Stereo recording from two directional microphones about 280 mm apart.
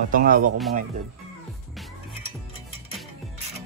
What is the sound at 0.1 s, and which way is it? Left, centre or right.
Speech, right.